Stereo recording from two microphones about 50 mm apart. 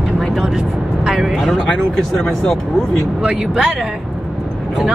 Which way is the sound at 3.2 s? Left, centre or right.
Centre.